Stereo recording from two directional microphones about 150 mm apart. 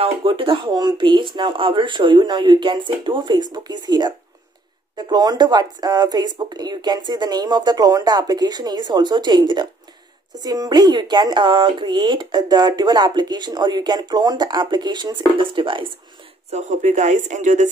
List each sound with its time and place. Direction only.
0.0 s speech: 35° right (ahead or behind)
16.4 s speech: 50° right (ahead or behind)